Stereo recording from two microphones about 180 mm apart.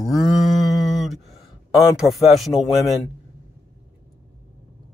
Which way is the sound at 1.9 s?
Centre (ahead or behind).